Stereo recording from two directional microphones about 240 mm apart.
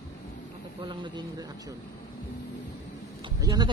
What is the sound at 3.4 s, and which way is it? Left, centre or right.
Speech, centre.